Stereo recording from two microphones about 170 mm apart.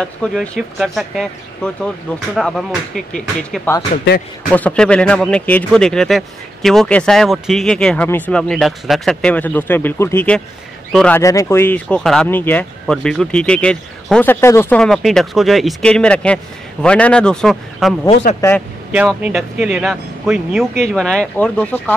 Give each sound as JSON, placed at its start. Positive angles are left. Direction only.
{"t": 0.0, "sound": "speech", "side_deg": 5}
{"t": 3.9, "sound": "speech", "side_deg": 65}
{"t": 4.5, "sound": "speech", "side_deg": 5}
{"t": 11.1, "sound": "speech", "side_deg": 15}
{"t": 14.8, "sound": "speech", "side_deg": 0}
{"t": 18.4, "sound": "speech", "side_deg": 20}
{"t": 18.9, "sound": "speech", "side_deg": -10}